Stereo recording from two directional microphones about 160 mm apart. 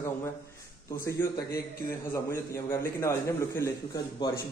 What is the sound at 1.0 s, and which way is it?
A man's voice, 20° left (ahead or behind).